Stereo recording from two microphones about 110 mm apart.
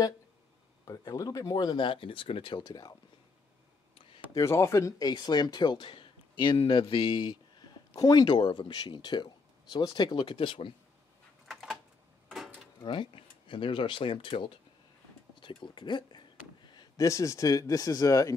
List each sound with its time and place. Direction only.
0.8 s speech: 30° left (ahead or behind)
4.3 s speech: 30° left (ahead or behind); by 10.7 s 55° left (ahead or behind)
11.4 s a sound: centre (ahead or behind)
12.8 s speech: 50° left (ahead or behind); by 18.3 s 30° left (ahead or behind)